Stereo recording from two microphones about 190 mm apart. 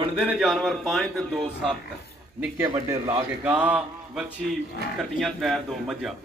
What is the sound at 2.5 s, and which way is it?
Speech, 15° right (ahead or behind).